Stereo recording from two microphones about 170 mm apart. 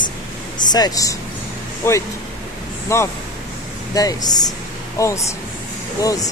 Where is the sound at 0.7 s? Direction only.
25° left (ahead or behind).